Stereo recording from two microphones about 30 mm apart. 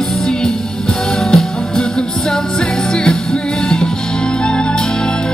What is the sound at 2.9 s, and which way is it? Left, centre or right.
Music, left.